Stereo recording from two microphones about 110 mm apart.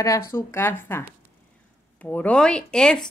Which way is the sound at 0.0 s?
25° left (ahead or behind).